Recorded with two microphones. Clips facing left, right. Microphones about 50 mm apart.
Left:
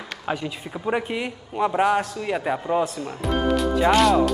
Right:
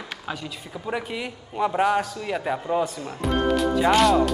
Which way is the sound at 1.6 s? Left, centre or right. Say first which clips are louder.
Left 1 dB; centre.